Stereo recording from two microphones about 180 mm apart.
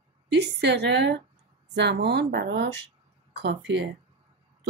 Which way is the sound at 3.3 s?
70° right (ahead or behind).